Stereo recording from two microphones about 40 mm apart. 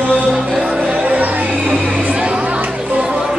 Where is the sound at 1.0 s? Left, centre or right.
Right.